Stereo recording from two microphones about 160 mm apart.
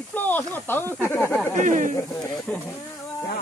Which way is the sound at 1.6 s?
55° right (ahead or behind).